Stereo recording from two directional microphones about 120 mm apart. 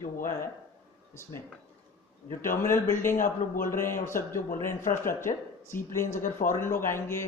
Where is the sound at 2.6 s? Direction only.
20° left (ahead or behind).